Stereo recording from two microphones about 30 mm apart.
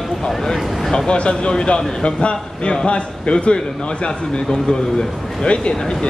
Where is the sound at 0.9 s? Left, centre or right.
Left.